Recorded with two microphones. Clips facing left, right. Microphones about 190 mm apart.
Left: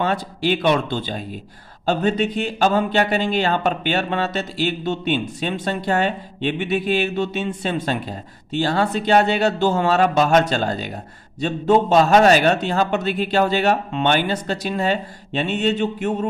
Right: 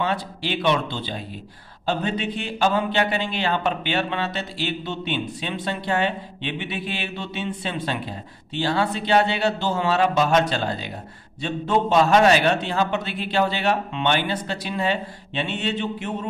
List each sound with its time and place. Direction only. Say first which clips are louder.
0.0 s speech: left 4 dB; 45° left (ahead or behind)